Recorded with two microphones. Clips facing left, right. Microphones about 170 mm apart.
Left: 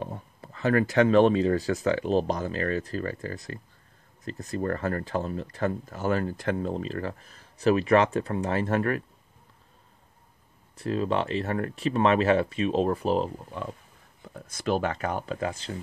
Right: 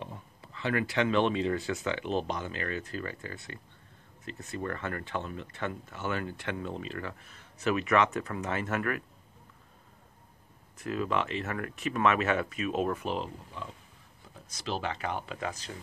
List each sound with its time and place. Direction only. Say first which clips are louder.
0.0 s speech: left 7 dB; 45° left (ahead or behind)
10.8 s speech: left 4 dB; 30° left (ahead or behind)